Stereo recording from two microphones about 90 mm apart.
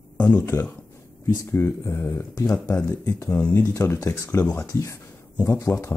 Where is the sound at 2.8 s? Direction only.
35° left (ahead or behind).